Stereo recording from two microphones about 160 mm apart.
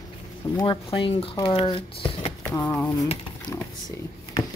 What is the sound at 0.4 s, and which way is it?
Speech, 25° left (ahead or behind).